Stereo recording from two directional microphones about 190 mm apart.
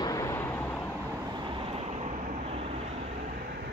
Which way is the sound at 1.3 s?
25° right (ahead or behind).